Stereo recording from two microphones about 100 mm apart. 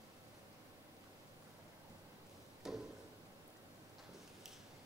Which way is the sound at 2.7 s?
5° right (ahead or behind).